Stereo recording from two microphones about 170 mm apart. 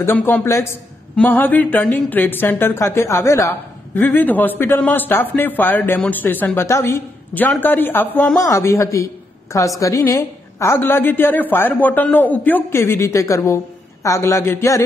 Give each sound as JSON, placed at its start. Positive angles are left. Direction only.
{"t": 0.0, "sound": "a woman's voice", "side_deg": 10}